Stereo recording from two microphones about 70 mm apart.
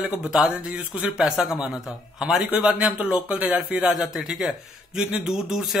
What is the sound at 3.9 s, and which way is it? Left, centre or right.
Speech, centre.